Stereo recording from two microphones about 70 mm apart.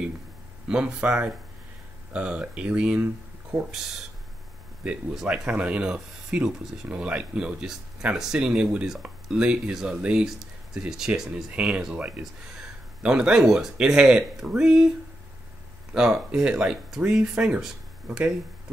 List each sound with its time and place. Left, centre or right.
0.7 s speech: centre
5.5 s speech: centre
13.0 s speech: centre
15.9 s speech: centre